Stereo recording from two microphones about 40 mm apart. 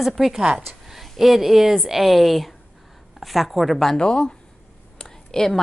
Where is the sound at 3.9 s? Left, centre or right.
Left.